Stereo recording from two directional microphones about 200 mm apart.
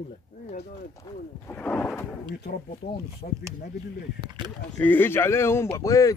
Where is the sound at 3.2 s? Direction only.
45° left (ahead or behind).